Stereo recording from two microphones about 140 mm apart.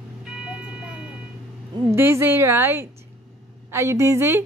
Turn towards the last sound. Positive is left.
turn(degrees=-20)  # may be behind; listen again after turning